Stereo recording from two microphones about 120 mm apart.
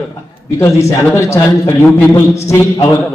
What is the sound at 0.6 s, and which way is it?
A man's voice, 25° left (ahead or behind).